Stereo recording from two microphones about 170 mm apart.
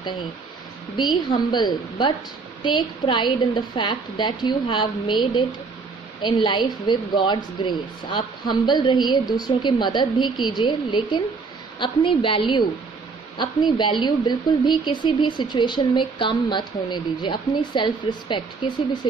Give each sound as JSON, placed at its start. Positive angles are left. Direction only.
{"t": 0.9, "sound": "a woman's voice", "side_deg": 25}